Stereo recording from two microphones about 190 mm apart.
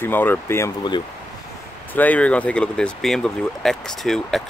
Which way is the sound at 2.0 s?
10° left (ahead or behind).